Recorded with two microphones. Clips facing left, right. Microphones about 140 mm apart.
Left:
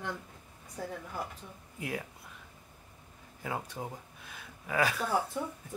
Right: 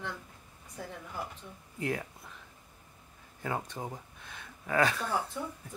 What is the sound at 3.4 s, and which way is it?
Speech, 5° left (ahead or behind).